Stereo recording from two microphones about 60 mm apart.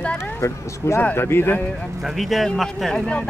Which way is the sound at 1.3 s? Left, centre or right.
Left.